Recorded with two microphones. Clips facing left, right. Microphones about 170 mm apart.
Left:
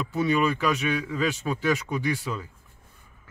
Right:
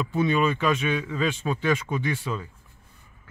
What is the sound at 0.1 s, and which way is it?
Speech, 5° left (ahead or behind).